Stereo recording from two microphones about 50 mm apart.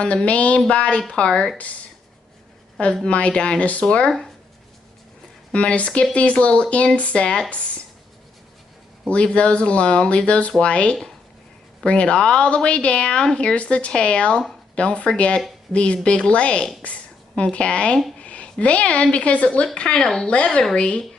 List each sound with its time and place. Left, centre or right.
0.0 s a woman's voice: left
2.9 s a woman's voice: left
5.5 s a woman's voice: left
9.0 s a woman's voice: left